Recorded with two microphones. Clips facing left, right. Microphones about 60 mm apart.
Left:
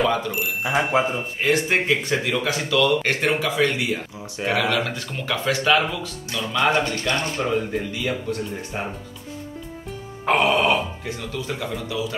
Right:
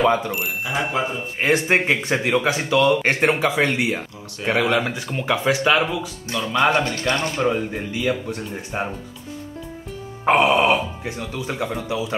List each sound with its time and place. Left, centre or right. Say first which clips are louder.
0.7 s speech: left 4 dB; centre
1.4 s speech: right 2 dB; right; by 6.1 s centre
6.5 s speech: right 2 dB; right
7.2 s speech: right 2 dB; centre
10.2 s speech: right 3 dB; centre